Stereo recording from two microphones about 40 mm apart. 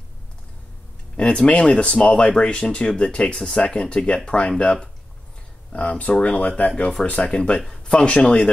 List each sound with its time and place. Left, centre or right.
1.1 s speech: left
3.3 s speech: centre
3.6 s speech: left
7.2 s speech: centre